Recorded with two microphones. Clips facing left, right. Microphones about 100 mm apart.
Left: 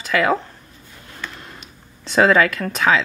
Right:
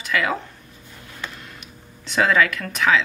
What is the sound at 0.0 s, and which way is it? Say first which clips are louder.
Speech: left 5 dB; 40° left (ahead or behind).